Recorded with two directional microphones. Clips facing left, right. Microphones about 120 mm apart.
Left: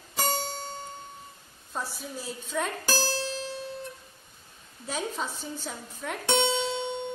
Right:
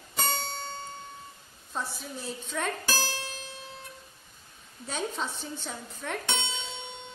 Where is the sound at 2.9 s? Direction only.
35° left (ahead or behind).